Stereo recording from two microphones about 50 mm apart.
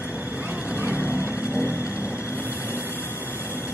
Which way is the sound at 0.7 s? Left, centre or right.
Right.